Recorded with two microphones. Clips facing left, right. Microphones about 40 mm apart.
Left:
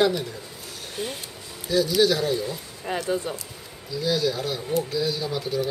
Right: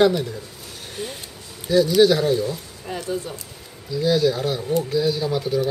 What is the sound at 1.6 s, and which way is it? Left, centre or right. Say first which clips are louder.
Speech: right 5 dB; centre.